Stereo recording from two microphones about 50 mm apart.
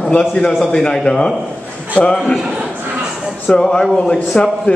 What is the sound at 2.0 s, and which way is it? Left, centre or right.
Speech, left.